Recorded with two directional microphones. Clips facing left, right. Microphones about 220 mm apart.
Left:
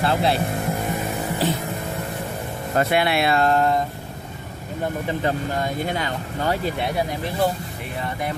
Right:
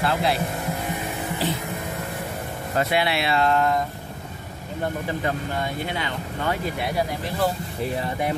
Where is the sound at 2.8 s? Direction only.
50° left (ahead or behind); by 3.8 s 35° left (ahead or behind).